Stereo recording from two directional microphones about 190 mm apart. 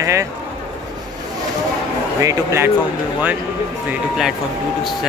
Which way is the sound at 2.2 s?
15° right (ahead or behind).